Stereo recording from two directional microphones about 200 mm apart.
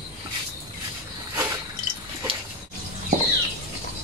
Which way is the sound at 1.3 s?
15° right (ahead or behind).